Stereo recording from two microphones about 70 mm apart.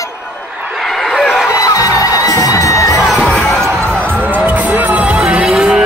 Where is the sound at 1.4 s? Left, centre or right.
Left.